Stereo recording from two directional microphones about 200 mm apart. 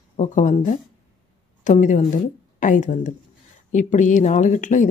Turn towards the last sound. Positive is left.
turn(degrees=40)  # may be behind; listen again after turning